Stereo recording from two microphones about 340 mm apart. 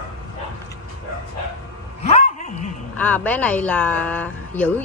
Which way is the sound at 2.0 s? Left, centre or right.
Centre.